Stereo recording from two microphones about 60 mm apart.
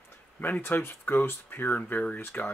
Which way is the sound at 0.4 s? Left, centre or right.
Left.